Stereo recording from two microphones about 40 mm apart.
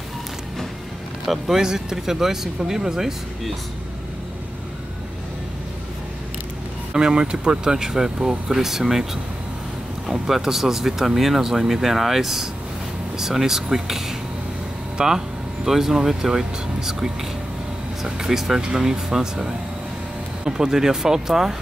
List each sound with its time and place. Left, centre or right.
1.2 s speech: centre
6.9 s speech: centre